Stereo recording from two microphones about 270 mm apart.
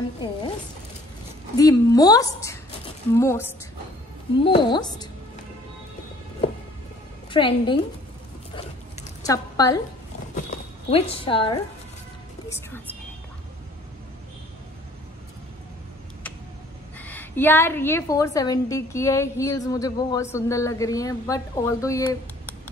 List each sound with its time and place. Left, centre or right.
1.6 s a woman's voice: centre
7.2 s a woman's voice: centre
8.5 s zipper: centre
10.3 s horse: left
12.4 s speech: centre
17.0 s a woman's voice: centre